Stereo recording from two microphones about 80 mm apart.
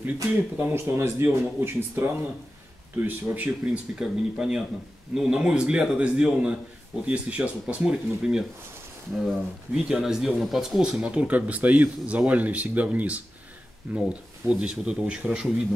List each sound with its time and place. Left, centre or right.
0.0 s speech: right
3.4 s speech: centre
10.6 s speech: centre